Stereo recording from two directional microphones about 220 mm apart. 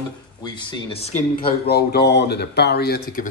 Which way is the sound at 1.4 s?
45° left (ahead or behind).